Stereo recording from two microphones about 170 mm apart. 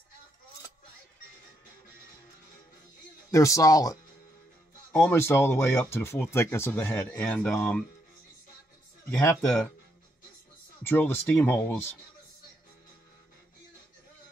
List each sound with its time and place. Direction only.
3.3 s a man's voice: 20° left (ahead or behind)
5.1 s speech: 15° left (ahead or behind)
9.2 s speech: 10° left (ahead or behind)
10.8 s speech: 10° left (ahead or behind)